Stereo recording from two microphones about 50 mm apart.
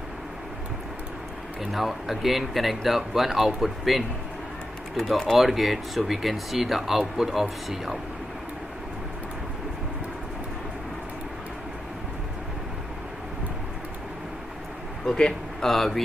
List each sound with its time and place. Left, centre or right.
1.6 s speech: centre
15.1 s a man's voice: centre
15.7 s speech: centre